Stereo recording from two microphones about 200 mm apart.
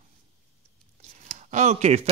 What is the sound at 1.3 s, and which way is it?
Speech, 35° right (ahead or behind).